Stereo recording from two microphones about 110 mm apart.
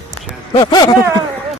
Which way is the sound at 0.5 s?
45° left (ahead or behind).